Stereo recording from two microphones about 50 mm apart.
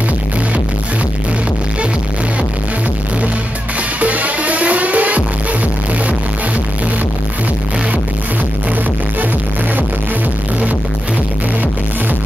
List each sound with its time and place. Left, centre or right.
4.0 s music: right